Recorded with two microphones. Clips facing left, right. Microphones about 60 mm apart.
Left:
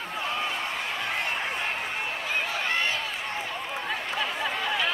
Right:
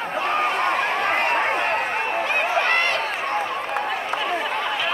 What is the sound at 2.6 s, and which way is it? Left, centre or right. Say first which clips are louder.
Run: right 7 dB; right.